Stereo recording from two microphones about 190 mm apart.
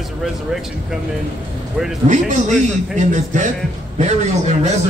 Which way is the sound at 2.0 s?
40° right (ahead or behind).